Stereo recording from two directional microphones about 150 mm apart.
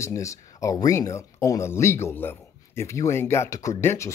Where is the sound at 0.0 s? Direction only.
20° left (ahead or behind).